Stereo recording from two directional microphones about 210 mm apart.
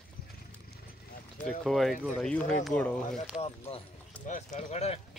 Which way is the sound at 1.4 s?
Centre (ahead or behind).